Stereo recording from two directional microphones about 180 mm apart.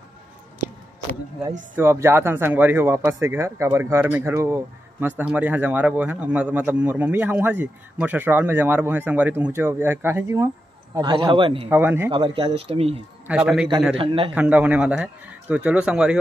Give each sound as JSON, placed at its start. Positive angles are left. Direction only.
{"t": 1.8, "sound": "speech", "side_deg": -15}
{"t": 11.0, "sound": "a man's voice", "side_deg": -25}
{"t": 11.7, "sound": "speech", "side_deg": -10}
{"t": 12.1, "sound": "speech", "side_deg": -30}
{"t": 13.3, "sound": "a man's voice", "side_deg": -5}
{"t": 13.9, "sound": "speech", "side_deg": -30}
{"t": 14.3, "sound": "speech", "side_deg": -5}